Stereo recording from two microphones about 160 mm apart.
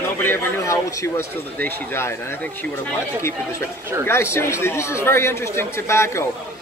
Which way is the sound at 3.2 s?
15° left (ahead or behind).